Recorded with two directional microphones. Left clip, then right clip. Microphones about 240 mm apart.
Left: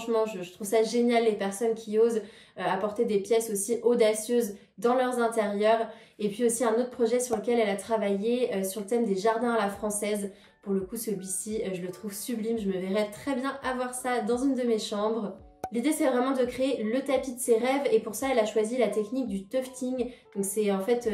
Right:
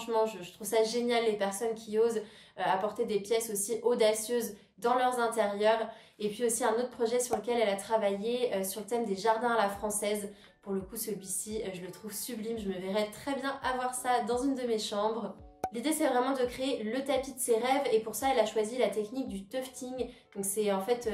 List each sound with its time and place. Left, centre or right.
0.0 s speech: centre
11.4 s speech: centre